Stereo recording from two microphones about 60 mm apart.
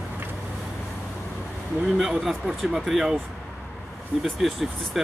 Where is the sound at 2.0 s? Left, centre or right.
Centre.